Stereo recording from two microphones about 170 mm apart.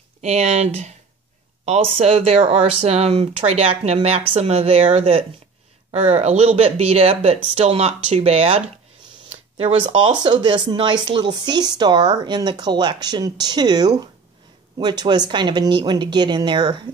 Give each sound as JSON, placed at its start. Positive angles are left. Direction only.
{"t": 0.2, "sound": "speech", "side_deg": -40}
{"t": 2.0, "sound": "speech", "side_deg": -35}